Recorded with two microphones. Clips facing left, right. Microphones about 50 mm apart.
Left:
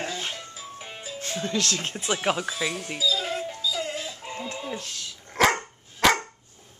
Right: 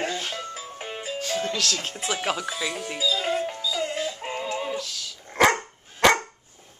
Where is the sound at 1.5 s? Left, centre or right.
Left.